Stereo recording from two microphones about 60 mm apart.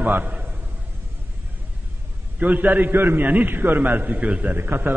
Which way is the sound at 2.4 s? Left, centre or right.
Right.